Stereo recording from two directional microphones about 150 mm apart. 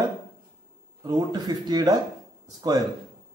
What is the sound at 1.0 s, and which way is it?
Speech, 30° right (ahead or behind).